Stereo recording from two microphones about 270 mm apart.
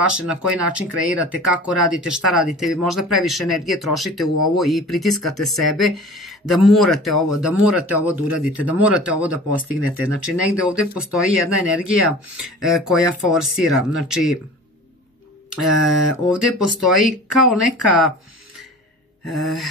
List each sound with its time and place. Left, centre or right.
0.3 s speech: centre
15.6 s speech: centre
19.2 s speech: centre